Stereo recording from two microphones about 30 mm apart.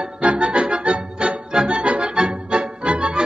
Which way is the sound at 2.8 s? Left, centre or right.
Right.